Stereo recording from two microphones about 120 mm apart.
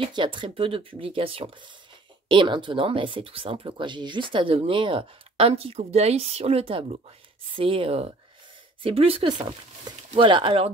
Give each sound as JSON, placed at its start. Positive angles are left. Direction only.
{"t": 0.0, "sound": "speech", "side_deg": -45}